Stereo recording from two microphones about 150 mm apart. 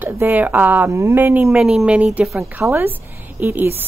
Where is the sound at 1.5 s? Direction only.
5° right (ahead or behind).